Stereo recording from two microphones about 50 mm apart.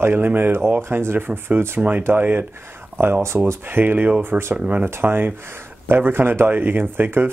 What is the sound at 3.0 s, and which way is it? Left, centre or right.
Speech, right.